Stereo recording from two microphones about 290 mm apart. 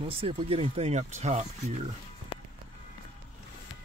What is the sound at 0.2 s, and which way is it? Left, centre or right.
Speech, centre.